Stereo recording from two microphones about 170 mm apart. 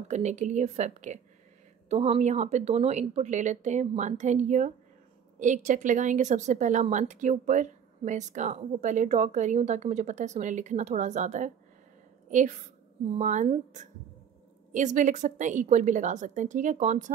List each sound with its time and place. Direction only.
0.1 s a woman's voice: 40° right (ahead or behind)